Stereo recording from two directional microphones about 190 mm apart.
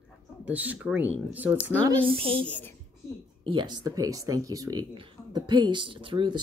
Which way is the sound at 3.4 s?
25° right (ahead or behind).